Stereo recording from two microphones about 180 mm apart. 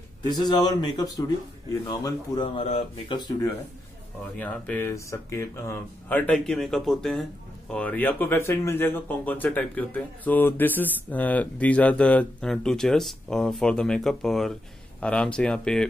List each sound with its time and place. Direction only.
0.3 s speech: 25° left (ahead or behind)
4.4 s speech: 10° left (ahead or behind)